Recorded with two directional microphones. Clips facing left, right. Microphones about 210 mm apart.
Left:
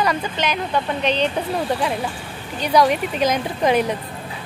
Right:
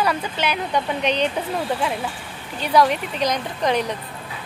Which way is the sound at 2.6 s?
Centre (ahead or behind).